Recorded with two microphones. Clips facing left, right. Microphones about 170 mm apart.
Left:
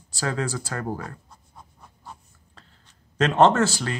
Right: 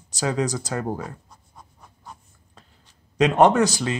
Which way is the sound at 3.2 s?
15° right (ahead or behind).